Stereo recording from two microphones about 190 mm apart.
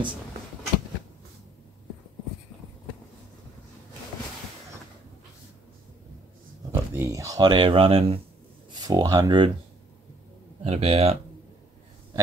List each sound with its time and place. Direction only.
6.7 s speech: 15° right (ahead or behind)
10.6 s speech: 35° right (ahead or behind)